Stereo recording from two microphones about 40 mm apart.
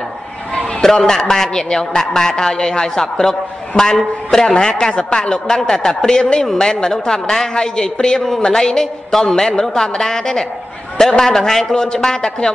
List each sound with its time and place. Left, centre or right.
0.8 s a man's voice: centre